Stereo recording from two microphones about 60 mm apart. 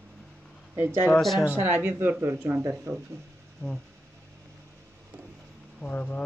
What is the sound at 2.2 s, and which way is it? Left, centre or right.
Speech, right.